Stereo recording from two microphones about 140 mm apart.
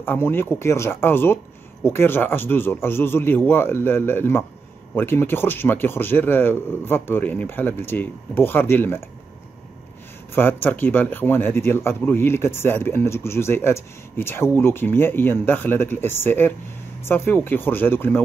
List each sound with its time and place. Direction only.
0.0 s speech: 15° left (ahead or behind)
10.3 s speech: 15° left (ahead or behind)